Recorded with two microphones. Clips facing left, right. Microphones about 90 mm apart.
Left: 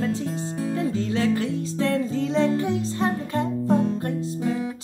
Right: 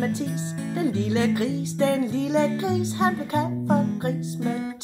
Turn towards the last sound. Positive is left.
turn(degrees=-20)  # may be behind; listen again after turning